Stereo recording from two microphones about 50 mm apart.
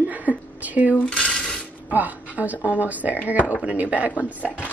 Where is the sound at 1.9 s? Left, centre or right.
Right.